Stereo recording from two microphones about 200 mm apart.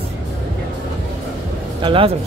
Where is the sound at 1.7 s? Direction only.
25° right (ahead or behind).